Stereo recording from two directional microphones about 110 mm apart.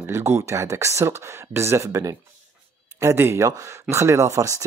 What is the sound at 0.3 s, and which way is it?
Speech, 25° right (ahead or behind).